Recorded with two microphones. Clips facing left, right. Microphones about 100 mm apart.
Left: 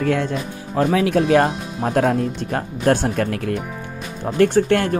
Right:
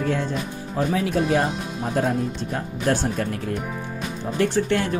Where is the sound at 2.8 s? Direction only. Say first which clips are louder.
Left 5 dB; 60° left (ahead or behind).